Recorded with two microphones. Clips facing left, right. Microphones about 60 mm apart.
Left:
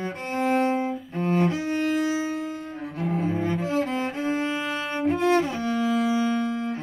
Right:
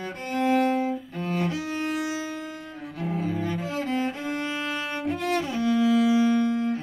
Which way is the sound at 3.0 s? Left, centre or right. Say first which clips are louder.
Left 2 dB; left.